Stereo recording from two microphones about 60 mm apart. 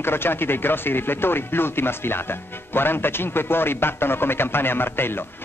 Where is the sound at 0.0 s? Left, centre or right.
Left.